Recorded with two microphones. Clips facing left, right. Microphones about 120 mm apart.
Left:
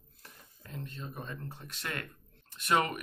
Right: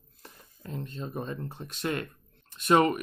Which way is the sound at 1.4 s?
20° right (ahead or behind).